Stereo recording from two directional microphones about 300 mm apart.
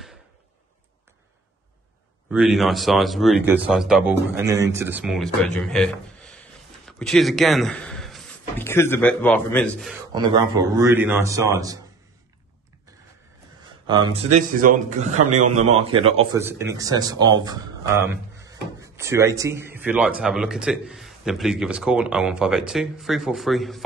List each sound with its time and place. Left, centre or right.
2.3 s a man's voice: centre
6.9 s a man's voice: centre
10.1 s speech: centre
13.8 s a man's voice: centre